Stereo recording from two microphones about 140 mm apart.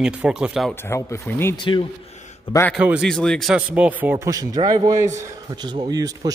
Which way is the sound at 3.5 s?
10° right (ahead or behind).